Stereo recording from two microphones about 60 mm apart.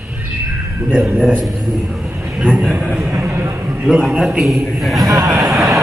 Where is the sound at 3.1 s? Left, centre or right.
Right.